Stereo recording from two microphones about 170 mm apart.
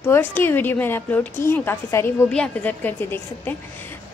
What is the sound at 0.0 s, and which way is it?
A woman's voice, 15° left (ahead or behind).